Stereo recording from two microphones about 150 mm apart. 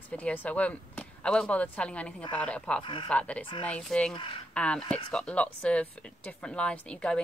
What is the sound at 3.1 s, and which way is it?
Speech, 10° left (ahead or behind).